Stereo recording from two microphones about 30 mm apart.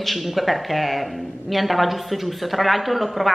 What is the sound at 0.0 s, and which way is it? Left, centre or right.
Speech, centre.